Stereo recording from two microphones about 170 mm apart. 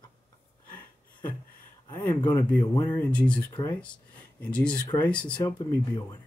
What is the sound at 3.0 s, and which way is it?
Speech, 5° left (ahead or behind).